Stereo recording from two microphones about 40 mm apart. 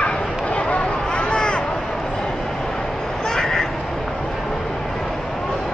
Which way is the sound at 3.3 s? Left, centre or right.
Centre.